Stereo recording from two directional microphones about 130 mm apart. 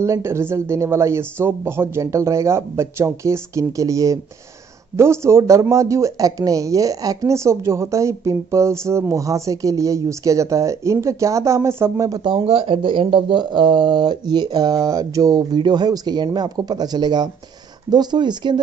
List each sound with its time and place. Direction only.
0.0 s speech: 20° right (ahead or behind)
12.2 s speech: 40° right (ahead or behind)